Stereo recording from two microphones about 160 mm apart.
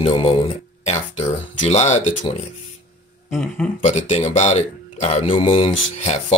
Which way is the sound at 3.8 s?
40° left (ahead or behind).